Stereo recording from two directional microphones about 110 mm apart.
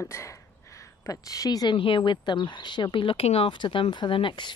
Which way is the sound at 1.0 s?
30° left (ahead or behind).